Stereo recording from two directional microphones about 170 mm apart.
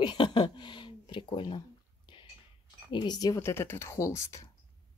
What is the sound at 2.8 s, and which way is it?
Speech, 25° left (ahead or behind).